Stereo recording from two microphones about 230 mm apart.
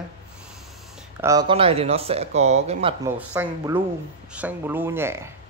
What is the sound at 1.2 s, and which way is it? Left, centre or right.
Speech, centre.